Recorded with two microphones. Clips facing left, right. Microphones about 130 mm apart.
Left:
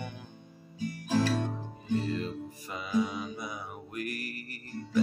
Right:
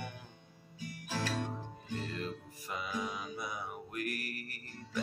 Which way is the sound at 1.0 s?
35° left (ahead or behind).